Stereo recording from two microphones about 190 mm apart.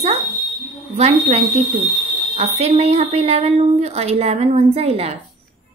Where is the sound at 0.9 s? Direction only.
35° right (ahead or behind).